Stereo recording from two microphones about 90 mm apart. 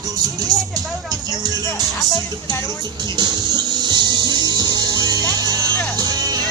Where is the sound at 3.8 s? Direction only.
55° right (ahead or behind).